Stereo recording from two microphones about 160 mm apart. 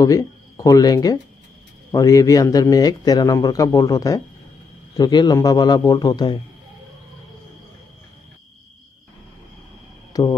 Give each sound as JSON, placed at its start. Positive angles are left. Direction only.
{"t": 0.0, "sound": "speech", "side_deg": 20}
{"t": 10.1, "sound": "speech", "side_deg": 20}